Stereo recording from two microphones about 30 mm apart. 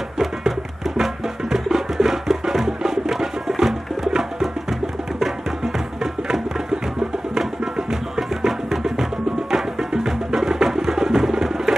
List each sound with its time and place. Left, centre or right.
0.9 s music: centre
7.9 s music: centre